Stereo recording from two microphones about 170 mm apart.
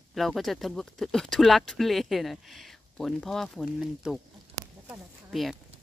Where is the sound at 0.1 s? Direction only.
Centre (ahead or behind).